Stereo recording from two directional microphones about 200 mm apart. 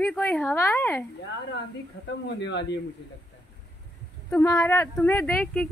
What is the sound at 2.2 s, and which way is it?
Speech, 60° left (ahead or behind).